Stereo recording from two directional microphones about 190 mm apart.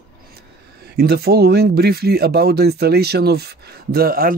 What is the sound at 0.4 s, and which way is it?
Speech, 55° right (ahead or behind).